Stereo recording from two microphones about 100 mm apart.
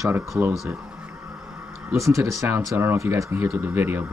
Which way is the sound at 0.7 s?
15° right (ahead or behind).